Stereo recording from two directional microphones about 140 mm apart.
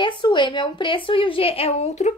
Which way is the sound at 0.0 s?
35° left (ahead or behind).